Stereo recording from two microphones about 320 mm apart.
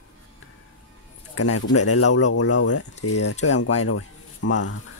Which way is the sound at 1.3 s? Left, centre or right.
Left.